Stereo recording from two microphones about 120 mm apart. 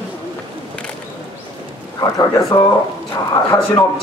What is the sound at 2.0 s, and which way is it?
Speech, 30° left (ahead or behind).